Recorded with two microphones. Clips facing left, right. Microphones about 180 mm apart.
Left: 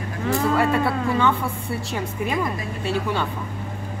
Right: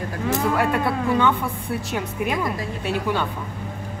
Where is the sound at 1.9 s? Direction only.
10° right (ahead or behind).